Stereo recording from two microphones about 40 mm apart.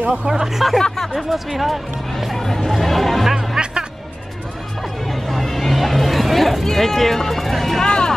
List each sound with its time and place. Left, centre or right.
0.3 s speech: centre
0.7 s speech: centre
1.1 s speech: centre
3.3 s music: centre
5.1 s a sound: centre
7.8 s vehicle: left